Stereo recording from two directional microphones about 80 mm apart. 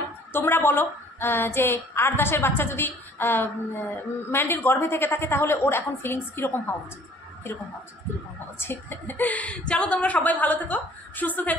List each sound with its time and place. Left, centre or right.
0.3 s a woman's voice: left
8.5 s a woman's voice: left